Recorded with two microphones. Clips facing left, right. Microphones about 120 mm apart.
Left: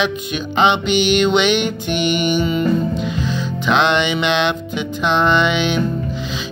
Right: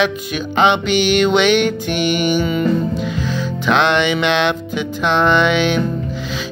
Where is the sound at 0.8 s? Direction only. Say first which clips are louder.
Right 1 dB; 20° left (ahead or behind).